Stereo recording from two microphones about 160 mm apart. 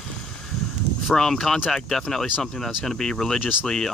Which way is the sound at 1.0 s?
5° left (ahead or behind).